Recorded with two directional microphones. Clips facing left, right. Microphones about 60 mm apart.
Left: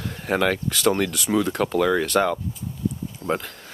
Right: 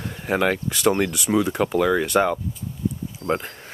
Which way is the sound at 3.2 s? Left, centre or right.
Centre.